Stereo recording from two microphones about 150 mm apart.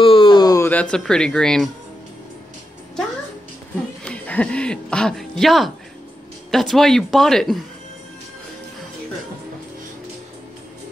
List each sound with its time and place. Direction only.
0.0 s a sound: 35° left (ahead or behind)
0.7 s speech: 10° left (ahead or behind)
4.0 s speech: 10° left (ahead or behind)